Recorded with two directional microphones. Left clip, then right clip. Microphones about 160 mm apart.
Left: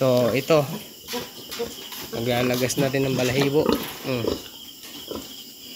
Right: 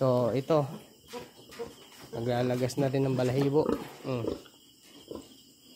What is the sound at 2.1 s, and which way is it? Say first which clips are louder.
Speech: left 7 dB; 30° right (ahead or behind).